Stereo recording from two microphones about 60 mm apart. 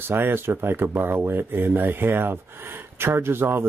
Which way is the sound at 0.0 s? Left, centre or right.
Right.